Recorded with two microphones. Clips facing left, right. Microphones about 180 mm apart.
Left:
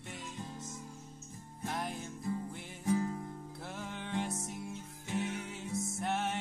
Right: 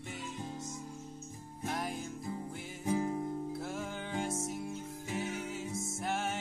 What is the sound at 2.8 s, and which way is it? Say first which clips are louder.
Music: even; 20° right (ahead or behind).